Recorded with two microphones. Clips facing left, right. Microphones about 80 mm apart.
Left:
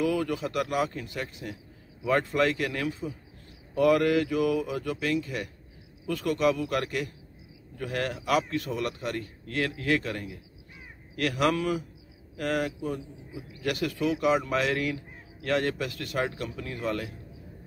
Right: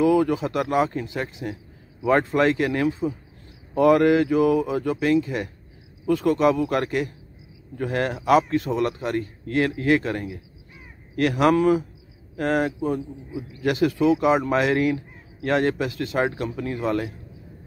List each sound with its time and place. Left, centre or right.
0.0 s speech: right